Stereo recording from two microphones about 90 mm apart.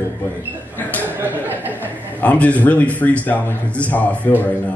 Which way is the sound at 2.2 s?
15° left (ahead or behind).